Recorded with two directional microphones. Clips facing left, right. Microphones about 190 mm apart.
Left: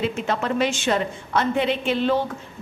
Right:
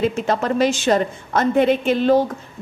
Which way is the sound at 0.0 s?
40° right (ahead or behind).